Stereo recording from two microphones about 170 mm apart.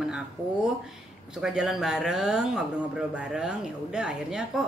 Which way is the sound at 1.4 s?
5° right (ahead or behind).